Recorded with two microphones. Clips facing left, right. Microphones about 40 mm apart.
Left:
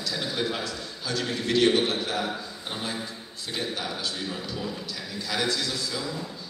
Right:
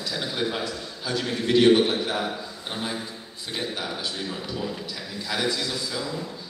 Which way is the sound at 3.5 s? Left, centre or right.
Centre.